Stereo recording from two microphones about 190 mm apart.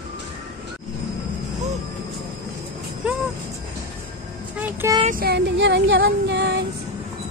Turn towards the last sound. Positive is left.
turn(degrees=-65)  # may be behind; listen again after turning